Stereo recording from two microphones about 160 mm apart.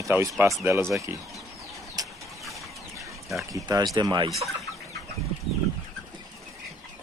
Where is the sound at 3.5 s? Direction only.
25° right (ahead or behind).